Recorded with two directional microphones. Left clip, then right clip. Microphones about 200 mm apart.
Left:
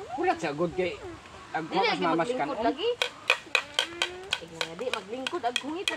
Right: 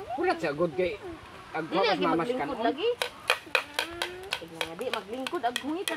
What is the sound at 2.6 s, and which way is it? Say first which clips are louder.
Speech: right 1 dB; 20° right (ahead or behind).